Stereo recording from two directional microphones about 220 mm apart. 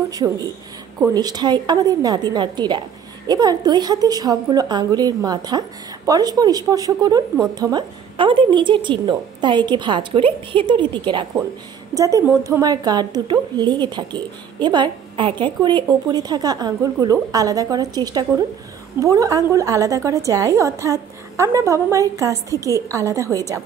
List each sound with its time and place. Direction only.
1.0 s a woman's voice: 20° right (ahead or behind)